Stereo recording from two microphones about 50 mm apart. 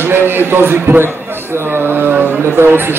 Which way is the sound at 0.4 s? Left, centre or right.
Right.